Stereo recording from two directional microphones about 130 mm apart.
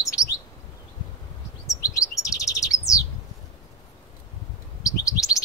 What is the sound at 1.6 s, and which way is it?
Chirp, 25° left (ahead or behind).